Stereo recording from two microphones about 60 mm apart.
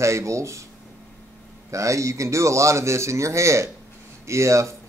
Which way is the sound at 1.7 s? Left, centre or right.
Right.